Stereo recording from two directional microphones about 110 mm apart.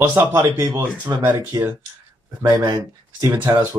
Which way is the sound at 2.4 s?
35° right (ahead or behind).